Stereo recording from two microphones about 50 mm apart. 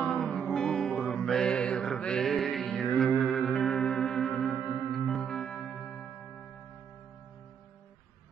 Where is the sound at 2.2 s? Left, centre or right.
Centre.